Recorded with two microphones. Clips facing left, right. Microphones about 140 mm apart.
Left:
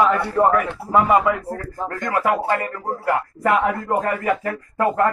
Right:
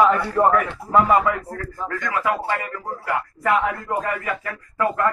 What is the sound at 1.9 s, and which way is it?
Speech, 45° left (ahead or behind).